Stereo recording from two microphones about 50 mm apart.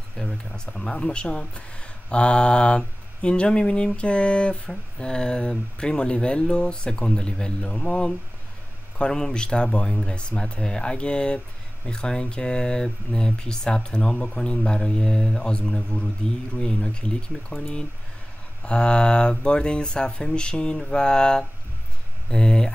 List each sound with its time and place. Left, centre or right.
0.2 s speech: centre
9.1 s speech: centre
17.5 s speech: centre
18.6 s speech: centre